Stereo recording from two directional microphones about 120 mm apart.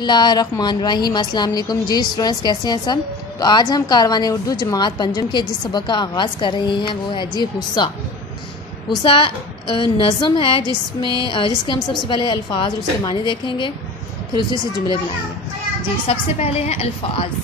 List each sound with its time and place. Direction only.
0.0 s speech: 40° left (ahead or behind)
9.0 s a woman's voice: 40° left (ahead or behind)
16.1 s a woman's voice: 55° left (ahead or behind)